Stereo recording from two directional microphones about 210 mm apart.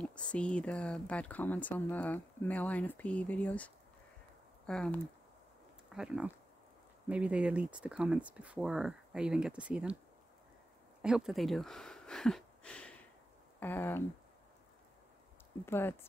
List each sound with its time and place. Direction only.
0.0 s speech: 5° left (ahead or behind)
11.0 s a sound: 5° right (ahead or behind)
13.6 s speech: 10° left (ahead or behind)
15.6 s speech: 10° left (ahead or behind)